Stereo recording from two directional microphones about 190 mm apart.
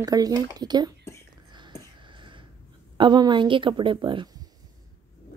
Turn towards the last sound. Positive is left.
turn(degrees=-25)  # may be behind; listen again after turning